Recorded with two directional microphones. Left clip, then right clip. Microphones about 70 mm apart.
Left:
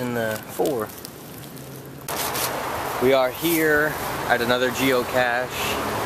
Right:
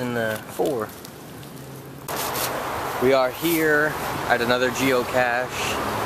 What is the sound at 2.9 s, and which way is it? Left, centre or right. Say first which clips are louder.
Speech: even; centre.